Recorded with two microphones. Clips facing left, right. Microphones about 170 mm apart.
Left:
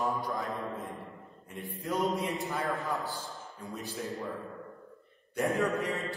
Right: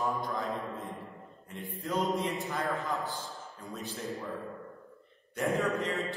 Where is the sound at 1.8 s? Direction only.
15° left (ahead or behind).